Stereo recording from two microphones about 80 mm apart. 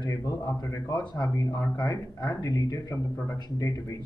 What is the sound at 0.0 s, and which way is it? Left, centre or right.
Speech, left.